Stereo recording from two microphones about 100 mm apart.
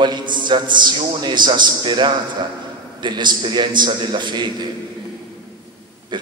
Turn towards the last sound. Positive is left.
turn(degrees=-50)  # may be behind; listen again after turning